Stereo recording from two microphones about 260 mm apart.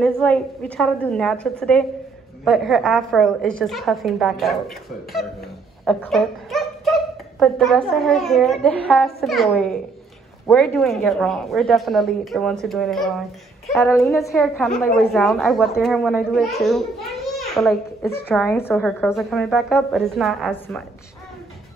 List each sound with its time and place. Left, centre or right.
0.0 s a woman's voice: centre
17.3 s a sound: centre
18.3 s a woman's voice: centre